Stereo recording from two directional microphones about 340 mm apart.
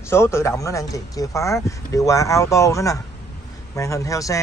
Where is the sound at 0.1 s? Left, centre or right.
Centre.